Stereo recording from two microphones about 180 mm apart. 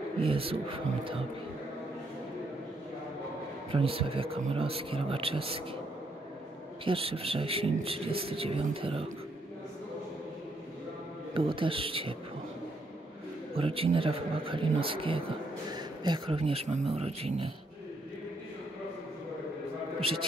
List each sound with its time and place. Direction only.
0.2 s a man's voice: 30° right (ahead or behind)
3.7 s a man's voice: 30° right (ahead or behind)
6.8 s a man's voice: 30° right (ahead or behind)
11.3 s a man's voice: 30° right (ahead or behind)
13.6 s a man's voice: 30° right (ahead or behind)
20.0 s speech: 30° right (ahead or behind)